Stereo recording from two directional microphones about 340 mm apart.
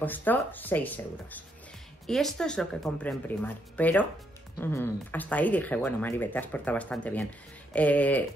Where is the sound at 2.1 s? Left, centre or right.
Centre.